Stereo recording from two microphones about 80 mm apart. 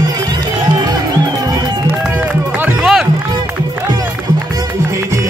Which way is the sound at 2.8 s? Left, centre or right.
Centre.